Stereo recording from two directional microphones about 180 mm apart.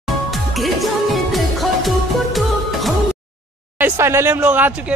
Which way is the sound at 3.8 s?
10° right (ahead or behind).